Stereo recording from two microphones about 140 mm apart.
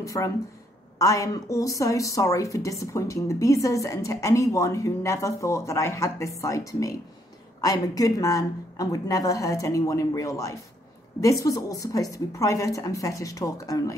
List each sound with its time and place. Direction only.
0.0 s a woman's voice: 25° left (ahead or behind)